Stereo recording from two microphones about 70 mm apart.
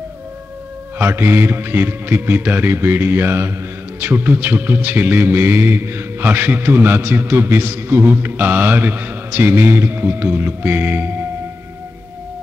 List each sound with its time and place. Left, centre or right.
0.9 s a man's voice: right